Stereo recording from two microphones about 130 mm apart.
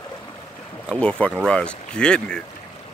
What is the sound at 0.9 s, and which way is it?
Speech, 10° left (ahead or behind).